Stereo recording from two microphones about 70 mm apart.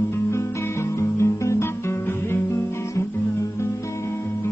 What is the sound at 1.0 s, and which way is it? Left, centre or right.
Music, left.